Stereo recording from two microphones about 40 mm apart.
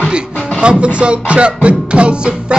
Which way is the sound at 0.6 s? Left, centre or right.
Right.